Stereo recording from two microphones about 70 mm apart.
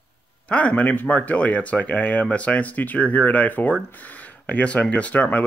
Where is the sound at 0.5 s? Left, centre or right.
Centre.